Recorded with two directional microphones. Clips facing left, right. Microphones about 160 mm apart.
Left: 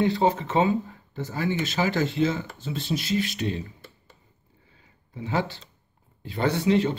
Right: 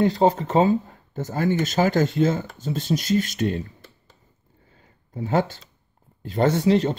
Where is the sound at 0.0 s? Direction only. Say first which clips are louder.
Right 3 dB; 40° right (ahead or behind).